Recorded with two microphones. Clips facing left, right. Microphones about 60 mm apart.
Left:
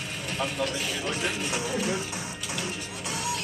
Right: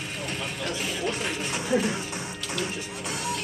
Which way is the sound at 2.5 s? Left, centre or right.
Centre.